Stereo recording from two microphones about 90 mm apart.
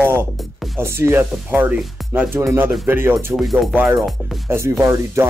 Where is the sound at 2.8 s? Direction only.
25° right (ahead or behind).